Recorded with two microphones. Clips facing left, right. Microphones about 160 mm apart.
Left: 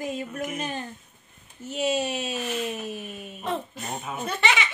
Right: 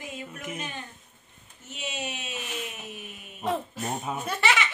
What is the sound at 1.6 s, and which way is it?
Speech, 35° left (ahead or behind).